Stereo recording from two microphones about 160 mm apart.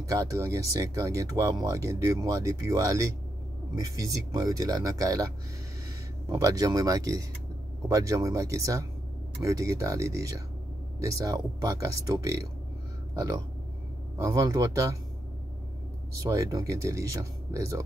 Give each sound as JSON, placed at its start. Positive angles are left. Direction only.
{"t": 0.0, "sound": "speech", "side_deg": -20}
{"t": 14.1, "sound": "speech", "side_deg": -20}
{"t": 16.2, "sound": "speech", "side_deg": -20}